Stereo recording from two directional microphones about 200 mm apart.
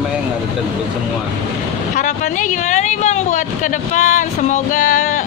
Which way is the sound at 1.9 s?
40° left (ahead or behind).